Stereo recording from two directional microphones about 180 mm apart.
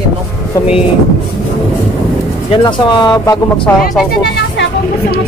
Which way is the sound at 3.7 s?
10° left (ahead or behind).